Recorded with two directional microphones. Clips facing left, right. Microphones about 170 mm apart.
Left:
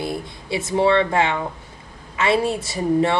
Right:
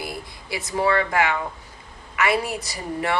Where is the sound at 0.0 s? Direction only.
25° left (ahead or behind).